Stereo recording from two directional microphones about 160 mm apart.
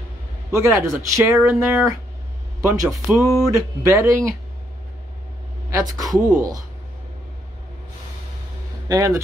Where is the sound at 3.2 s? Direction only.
20° right (ahead or behind).